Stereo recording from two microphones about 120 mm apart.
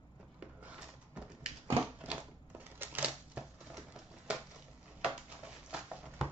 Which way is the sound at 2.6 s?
15° right (ahead or behind).